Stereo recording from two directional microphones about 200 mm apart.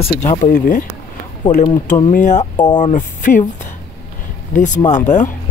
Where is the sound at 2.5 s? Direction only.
20° left (ahead or behind).